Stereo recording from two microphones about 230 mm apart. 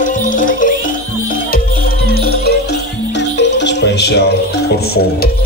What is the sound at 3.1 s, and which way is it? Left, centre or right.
Music, left.